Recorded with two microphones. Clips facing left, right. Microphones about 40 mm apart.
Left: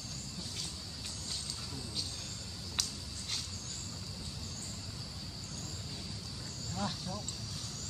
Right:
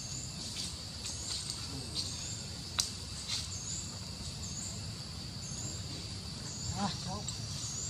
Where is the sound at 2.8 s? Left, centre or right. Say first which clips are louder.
Even; centre.